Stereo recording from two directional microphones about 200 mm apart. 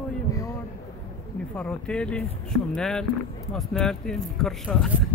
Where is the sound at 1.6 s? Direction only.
5° left (ahead or behind).